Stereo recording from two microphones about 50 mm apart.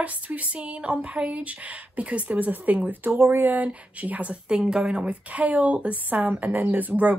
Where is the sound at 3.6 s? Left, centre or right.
Right.